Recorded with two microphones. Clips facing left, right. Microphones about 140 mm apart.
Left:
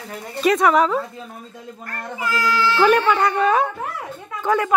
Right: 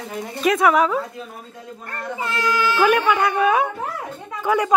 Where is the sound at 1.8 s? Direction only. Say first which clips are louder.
Even; 25° right (ahead or behind).